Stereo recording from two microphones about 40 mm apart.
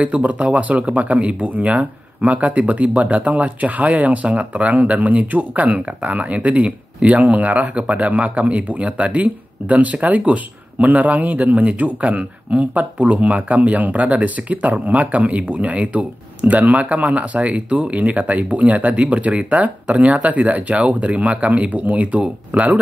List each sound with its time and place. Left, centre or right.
0.0 s speech: right